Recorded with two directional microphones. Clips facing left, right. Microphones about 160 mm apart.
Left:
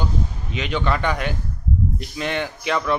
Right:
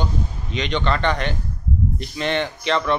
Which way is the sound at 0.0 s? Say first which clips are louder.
Even; 5° left (ahead or behind).